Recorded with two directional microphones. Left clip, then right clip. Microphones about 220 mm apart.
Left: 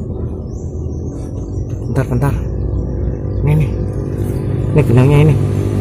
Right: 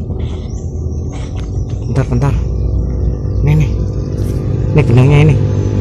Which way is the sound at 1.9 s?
Centre (ahead or behind).